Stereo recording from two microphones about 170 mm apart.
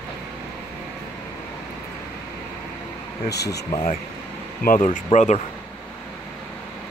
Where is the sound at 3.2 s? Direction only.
75° left (ahead or behind).